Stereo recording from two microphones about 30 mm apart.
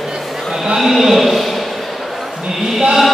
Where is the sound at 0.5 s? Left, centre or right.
Centre.